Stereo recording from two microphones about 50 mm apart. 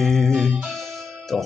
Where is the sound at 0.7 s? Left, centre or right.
Centre.